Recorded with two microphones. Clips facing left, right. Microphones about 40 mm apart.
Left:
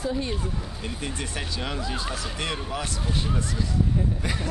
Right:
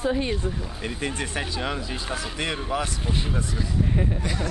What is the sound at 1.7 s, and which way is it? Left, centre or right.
Speech, centre.